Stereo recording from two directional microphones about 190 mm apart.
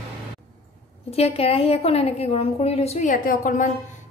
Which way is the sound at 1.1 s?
30° left (ahead or behind).